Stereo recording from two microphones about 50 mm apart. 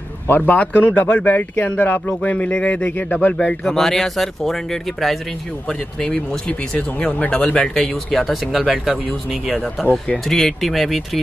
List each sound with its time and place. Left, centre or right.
0.3 s speech: left
3.6 s speech: centre
5.7 s speech: centre
7.7 s speech: centre
10.2 s speech: centre